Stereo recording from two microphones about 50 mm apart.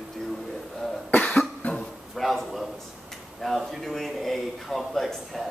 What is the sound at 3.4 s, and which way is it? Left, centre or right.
A man's voice, centre.